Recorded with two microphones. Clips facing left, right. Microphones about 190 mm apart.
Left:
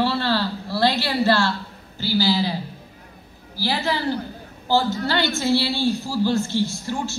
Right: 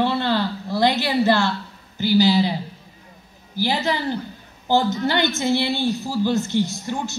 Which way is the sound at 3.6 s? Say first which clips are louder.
Right 2 dB; 20° right (ahead or behind).